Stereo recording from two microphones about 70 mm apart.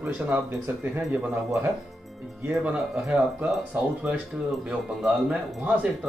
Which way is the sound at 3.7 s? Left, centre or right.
Centre.